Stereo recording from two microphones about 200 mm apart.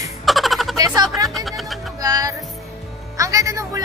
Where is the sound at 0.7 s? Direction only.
20° right (ahead or behind).